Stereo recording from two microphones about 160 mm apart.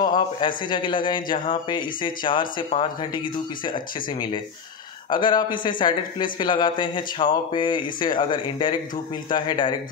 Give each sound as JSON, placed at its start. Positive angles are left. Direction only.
{"t": 0.0, "sound": "a man's voice", "side_deg": 30}